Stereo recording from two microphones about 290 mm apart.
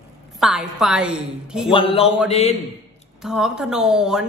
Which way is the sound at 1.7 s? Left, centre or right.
Centre.